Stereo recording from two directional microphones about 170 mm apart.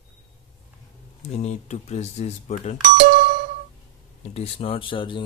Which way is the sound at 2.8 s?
45° right (ahead or behind).